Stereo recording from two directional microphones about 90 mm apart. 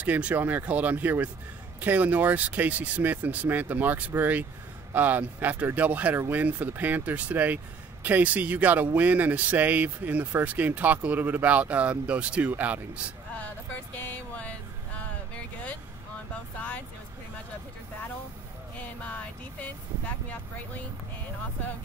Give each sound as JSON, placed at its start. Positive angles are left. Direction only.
{"t": 0.0, "sound": "speech", "side_deg": -15}
{"t": 19.6, "sound": "speech", "side_deg": 15}